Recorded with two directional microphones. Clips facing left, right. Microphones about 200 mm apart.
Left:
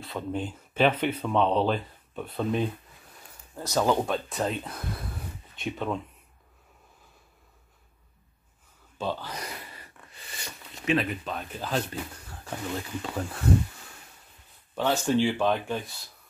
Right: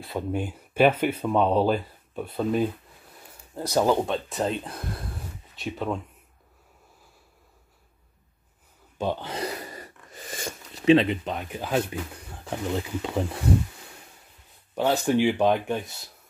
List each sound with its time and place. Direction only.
0.3 s speech: 10° right (ahead or behind)
4.9 s a sound: centre (ahead or behind)
8.9 s speech: 15° right (ahead or behind)
9.6 s a sound: 45° right (ahead or behind)
10.9 s speech: 25° right (ahead or behind)
14.8 s speech: 15° right (ahead or behind)